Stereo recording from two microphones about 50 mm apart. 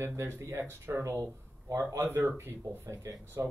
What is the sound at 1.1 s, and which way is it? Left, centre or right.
Speech, right.